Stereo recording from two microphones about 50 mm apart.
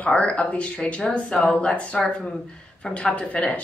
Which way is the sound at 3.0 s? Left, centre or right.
Left.